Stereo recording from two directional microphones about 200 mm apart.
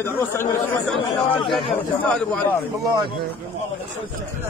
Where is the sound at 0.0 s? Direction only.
10° left (ahead or behind).